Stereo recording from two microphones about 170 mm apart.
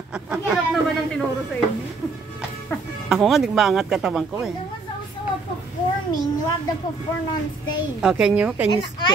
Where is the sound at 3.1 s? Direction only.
Centre (ahead or behind).